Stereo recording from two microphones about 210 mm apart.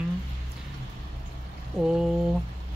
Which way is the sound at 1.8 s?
Centre (ahead or behind).